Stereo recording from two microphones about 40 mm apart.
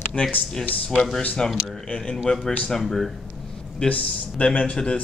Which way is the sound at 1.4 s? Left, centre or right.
Left.